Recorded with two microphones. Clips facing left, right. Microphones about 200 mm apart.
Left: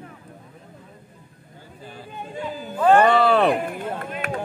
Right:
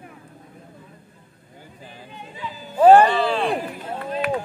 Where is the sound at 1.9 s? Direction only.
50° left (ahead or behind).